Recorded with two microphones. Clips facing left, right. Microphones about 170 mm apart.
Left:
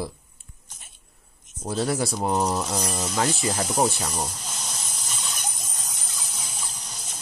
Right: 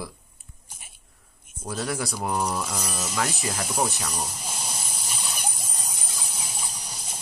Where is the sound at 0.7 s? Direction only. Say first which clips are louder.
Right 2 dB; 10° right (ahead or behind).